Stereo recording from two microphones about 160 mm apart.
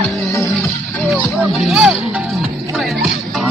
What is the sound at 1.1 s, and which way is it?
Music, 5° right (ahead or behind).